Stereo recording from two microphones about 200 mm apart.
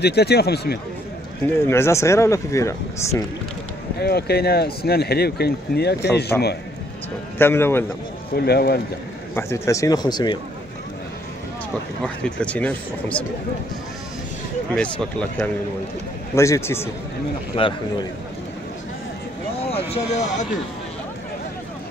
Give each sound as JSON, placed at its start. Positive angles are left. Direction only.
{"t": 0.0, "sound": "speech", "side_deg": 55}
{"t": 1.6, "sound": "speech", "side_deg": 10}
{"t": 4.0, "sound": "speech", "side_deg": 50}
{"t": 7.3, "sound": "speech", "side_deg": 10}
{"t": 8.3, "sound": "speech", "side_deg": 50}
{"t": 9.3, "sound": "speech", "side_deg": 15}
{"t": 12.0, "sound": "speech", "side_deg": 5}
{"t": 14.8, "sound": "speech", "side_deg": 5}
{"t": 17.6, "sound": "speech", "side_deg": 25}
{"t": 19.6, "sound": "a sound", "side_deg": 30}